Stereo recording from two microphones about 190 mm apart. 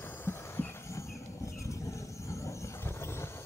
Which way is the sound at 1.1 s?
15° left (ahead or behind).